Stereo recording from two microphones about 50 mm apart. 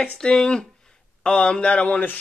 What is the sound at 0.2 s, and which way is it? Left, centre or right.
A man's voice, centre.